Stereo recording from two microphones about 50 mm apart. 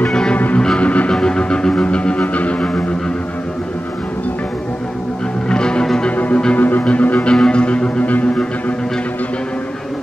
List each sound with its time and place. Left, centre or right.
0.1 s music: centre
0.8 s music: left
1.1 s music: centre
5.5 s music: centre
6.0 s music: left
7.3 s music: centre